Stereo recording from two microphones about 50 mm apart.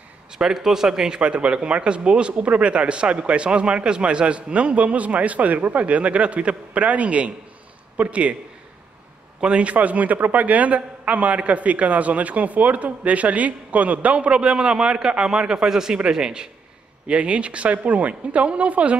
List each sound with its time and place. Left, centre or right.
0.4 s speech: centre
1.2 s a man's voice: right
9.4 s a man's voice: right
17.1 s a man's voice: right